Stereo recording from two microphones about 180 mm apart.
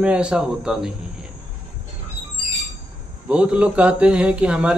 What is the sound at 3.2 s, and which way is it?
A man's voice, 5° right (ahead or behind).